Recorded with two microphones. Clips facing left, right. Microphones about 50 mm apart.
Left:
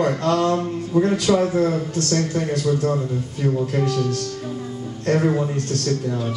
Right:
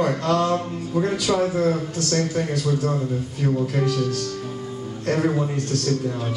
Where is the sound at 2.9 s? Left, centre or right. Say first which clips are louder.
Left 1 dB; centre.